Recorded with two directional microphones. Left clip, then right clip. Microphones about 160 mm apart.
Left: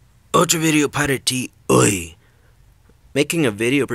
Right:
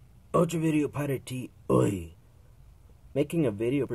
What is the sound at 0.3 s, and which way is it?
Speech, 25° left (ahead or behind).